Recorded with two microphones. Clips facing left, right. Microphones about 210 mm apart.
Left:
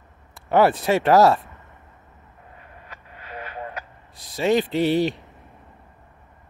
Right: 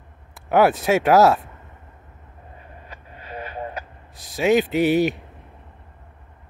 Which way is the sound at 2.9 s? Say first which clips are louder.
Right 2 dB; 30° right (ahead or behind).